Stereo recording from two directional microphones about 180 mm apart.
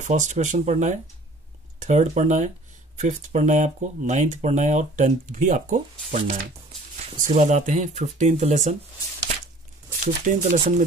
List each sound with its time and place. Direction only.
0.0 s speech: 40° right (ahead or behind)
7.2 s speech: 40° right (ahead or behind)
10.0 s speech: 45° right (ahead or behind)